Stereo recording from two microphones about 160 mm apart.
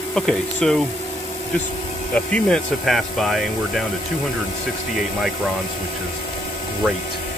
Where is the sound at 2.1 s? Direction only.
5° left (ahead or behind).